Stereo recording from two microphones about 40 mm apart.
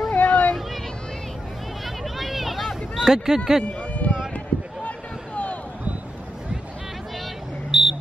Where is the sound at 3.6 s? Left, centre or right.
Left.